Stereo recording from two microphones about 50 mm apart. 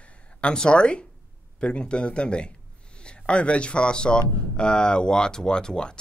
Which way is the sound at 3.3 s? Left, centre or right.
Left.